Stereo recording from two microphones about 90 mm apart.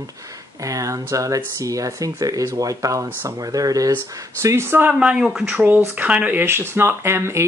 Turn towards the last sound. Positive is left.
turn(degrees=-30)  # may be behind; listen again after turning